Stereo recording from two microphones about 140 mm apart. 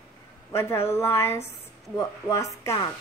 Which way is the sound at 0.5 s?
20° left (ahead or behind).